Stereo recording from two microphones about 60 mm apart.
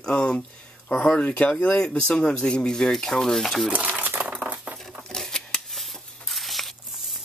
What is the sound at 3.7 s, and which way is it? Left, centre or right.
Crumpling, right.